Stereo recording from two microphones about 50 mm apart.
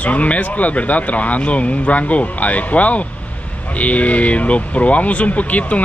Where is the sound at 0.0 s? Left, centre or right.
Left.